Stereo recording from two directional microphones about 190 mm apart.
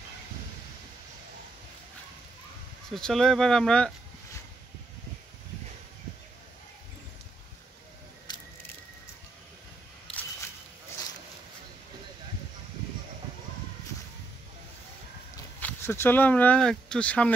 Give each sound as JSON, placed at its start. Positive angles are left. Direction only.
{"t": 2.9, "sound": "speech", "side_deg": 0}
{"t": 8.3, "sound": "a sound", "side_deg": 25}
{"t": 10.1, "sound": "single-lens reflex camera", "side_deg": 5}
{"t": 15.6, "sound": "speech", "side_deg": 10}